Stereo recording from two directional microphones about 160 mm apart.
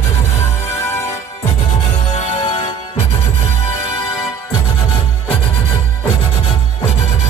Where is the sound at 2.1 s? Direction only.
45° left (ahead or behind).